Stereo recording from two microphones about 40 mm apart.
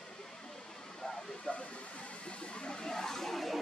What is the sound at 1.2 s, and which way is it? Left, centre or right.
Vehicle, left.